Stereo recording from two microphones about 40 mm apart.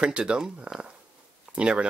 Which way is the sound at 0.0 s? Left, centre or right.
Right.